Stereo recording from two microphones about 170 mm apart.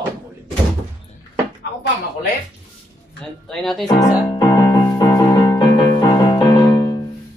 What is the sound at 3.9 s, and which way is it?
Music, 20° left (ahead or behind).